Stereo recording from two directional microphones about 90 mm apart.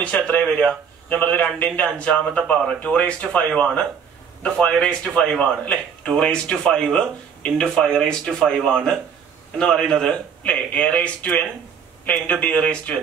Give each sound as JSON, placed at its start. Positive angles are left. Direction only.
{"t": 0.0, "sound": "speech", "side_deg": 15}
{"t": 9.6, "sound": "speech", "side_deg": 5}